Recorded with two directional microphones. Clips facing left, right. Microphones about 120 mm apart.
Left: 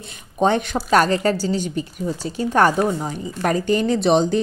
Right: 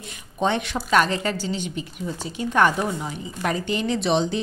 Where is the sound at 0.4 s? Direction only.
40° left (ahead or behind).